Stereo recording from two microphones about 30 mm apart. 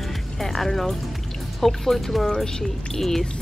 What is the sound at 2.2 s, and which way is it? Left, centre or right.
Speech, centre.